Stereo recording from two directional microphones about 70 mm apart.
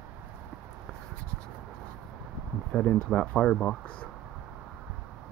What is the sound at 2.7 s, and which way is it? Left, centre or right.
Speech, centre.